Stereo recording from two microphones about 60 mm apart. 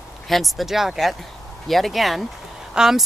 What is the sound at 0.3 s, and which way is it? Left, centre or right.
Speech, centre.